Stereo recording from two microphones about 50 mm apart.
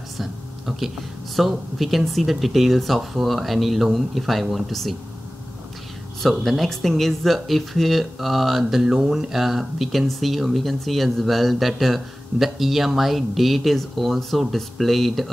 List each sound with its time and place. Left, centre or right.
0.2 s speech: centre
6.2 s speech: centre